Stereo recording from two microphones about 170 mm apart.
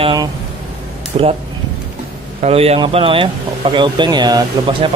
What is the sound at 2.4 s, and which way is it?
Speech, 35° right (ahead or behind).